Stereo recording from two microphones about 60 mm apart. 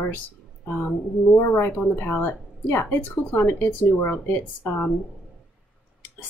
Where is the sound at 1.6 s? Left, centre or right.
Left.